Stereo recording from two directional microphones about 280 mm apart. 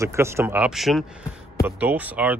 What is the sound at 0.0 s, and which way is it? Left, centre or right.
Speech, centre.